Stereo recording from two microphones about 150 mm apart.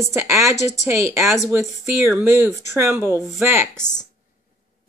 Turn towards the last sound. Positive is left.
turn(degrees=5)  # may be behind; listen again after turning